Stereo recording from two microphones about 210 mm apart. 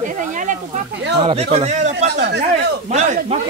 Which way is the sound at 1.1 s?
30° right (ahead or behind).